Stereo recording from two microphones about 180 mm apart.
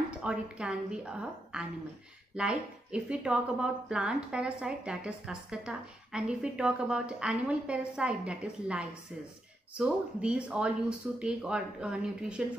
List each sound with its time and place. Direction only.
0.2 s speech: 5° right (ahead or behind)